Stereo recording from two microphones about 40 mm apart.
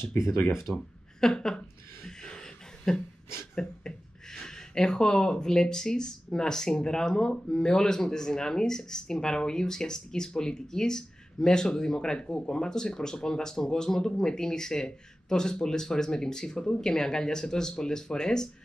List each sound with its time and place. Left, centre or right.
0.7 s speech: centre
2.0 s a sound: centre
3.5 s speech: centre